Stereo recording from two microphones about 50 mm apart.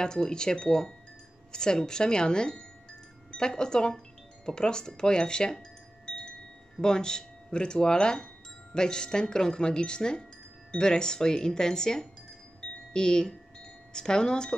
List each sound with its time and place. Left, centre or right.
0.0 s speech: centre
6.0 s wind chime: centre
6.8 s speech: centre